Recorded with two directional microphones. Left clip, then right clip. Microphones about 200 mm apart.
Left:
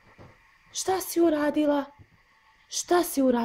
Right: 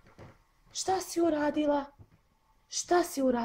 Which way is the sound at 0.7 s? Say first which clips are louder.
Left 4 dB; 40° left (ahead or behind).